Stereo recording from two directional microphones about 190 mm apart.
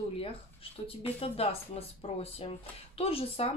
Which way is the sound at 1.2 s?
30° left (ahead or behind).